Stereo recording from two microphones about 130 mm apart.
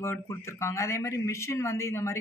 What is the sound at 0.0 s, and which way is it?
A man's voice, 20° left (ahead or behind).